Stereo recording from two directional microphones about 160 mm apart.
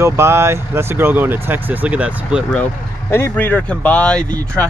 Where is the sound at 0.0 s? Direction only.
15° right (ahead or behind).